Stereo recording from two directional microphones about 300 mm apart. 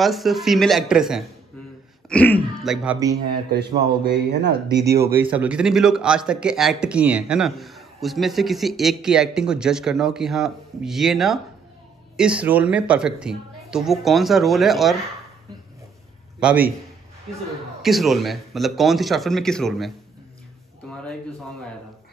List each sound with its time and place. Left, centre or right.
0.0 s a man's voice: centre
3.8 s a man's voice: right
4.8 s a man's voice: centre
16.3 s a man's voice: centre
17.8 s a man's voice: centre